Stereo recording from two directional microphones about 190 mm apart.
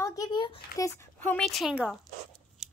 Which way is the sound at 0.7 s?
15° left (ahead or behind).